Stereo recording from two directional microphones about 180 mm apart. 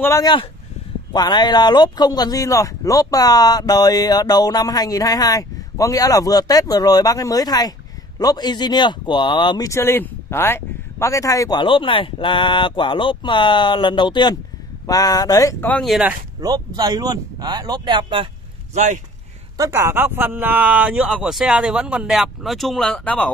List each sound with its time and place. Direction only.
0.0 s speech: 20° left (ahead or behind); by 16.2 s 5° right (ahead or behind)
16.3 s speech: 20° right (ahead or behind)
19.5 s speech: 15° right (ahead or behind); by 23.3 s 5° left (ahead or behind)